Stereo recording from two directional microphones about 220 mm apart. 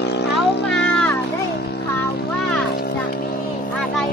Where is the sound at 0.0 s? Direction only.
50° left (ahead or behind).